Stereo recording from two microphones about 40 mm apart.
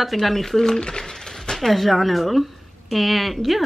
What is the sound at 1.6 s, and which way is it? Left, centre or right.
Speech, centre.